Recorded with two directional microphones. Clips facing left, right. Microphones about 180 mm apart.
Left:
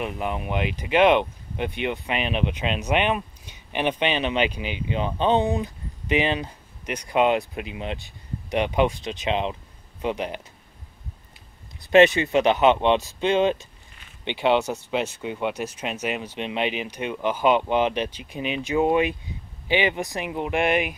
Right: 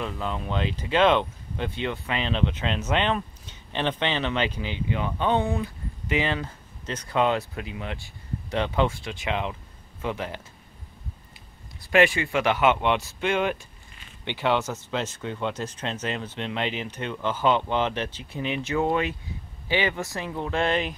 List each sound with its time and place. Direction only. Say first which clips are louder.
0.0 s speech: left 2 dB; 15° left (ahead or behind)
11.8 s speech: left 5 dB; 20° left (ahead or behind)